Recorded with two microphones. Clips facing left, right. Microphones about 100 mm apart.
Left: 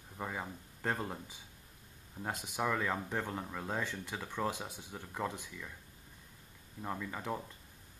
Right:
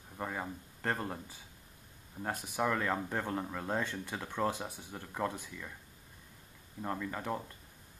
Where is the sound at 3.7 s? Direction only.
10° left (ahead or behind).